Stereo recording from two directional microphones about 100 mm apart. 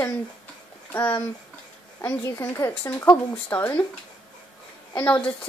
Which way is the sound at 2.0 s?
25° left (ahead or behind).